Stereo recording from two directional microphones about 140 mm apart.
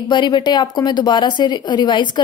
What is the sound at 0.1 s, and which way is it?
A woman's voice, 30° left (ahead or behind).